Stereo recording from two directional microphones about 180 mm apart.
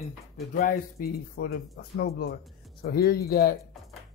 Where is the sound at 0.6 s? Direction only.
55° left (ahead or behind).